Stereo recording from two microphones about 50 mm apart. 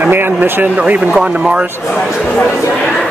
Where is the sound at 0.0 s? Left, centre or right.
Right.